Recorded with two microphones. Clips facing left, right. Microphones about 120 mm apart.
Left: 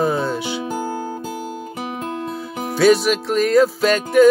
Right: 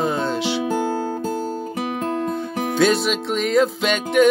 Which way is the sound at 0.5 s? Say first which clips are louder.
Right 3 dB; 70° right (ahead or behind).